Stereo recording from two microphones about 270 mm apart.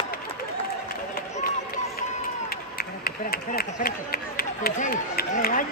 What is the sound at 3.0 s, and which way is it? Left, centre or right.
Speech, left.